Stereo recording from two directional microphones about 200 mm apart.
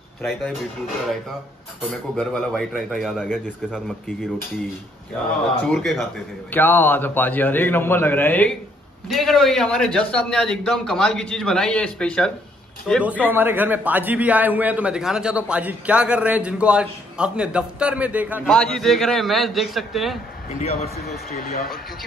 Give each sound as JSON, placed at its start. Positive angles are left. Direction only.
{"t": 0.2, "sound": "a man's voice", "side_deg": 0}
{"t": 2.1, "sound": "a man's voice", "side_deg": 5}
{"t": 5.7, "sound": "a man's voice", "side_deg": 0}
{"t": 18.5, "sound": "a man's voice", "side_deg": 5}
{"t": 20.5, "sound": "a man's voice", "side_deg": 30}
{"t": 20.9, "sound": "speech", "side_deg": 45}